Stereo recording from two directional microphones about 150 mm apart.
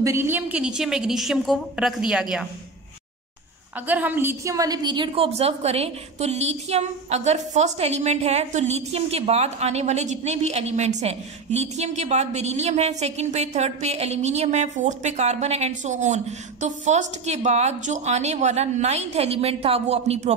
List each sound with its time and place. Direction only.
0.0 s a woman's voice: 15° right (ahead or behind)
3.8 s a woman's voice: 10° right (ahead or behind); by 20.3 s 45° right (ahead or behind)